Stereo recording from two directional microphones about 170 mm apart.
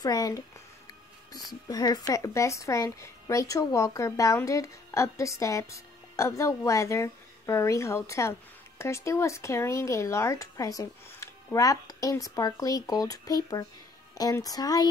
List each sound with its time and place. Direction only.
0.0 s speech: 20° left (ahead or behind)